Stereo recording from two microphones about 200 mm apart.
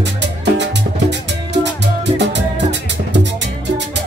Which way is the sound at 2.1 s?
60° right (ahead or behind).